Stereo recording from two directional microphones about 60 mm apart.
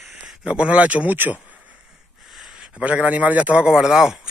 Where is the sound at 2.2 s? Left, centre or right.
Centre.